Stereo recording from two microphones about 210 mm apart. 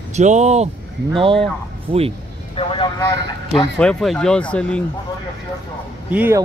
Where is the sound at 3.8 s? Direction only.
5° left (ahead or behind).